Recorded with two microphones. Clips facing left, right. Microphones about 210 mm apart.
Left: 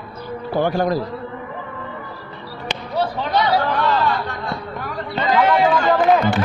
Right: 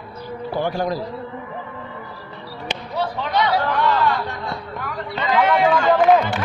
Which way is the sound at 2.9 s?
35° left (ahead or behind).